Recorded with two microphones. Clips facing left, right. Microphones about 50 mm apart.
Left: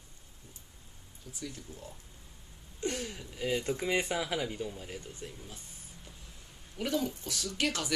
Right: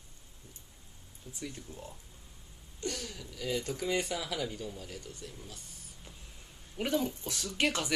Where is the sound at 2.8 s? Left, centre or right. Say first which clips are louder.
Left 3 dB; left.